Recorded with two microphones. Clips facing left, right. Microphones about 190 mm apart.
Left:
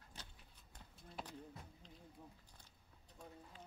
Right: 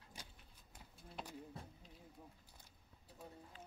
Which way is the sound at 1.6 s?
30° right (ahead or behind).